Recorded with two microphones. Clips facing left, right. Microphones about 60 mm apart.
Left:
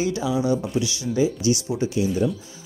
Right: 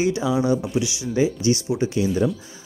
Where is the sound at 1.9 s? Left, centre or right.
Right.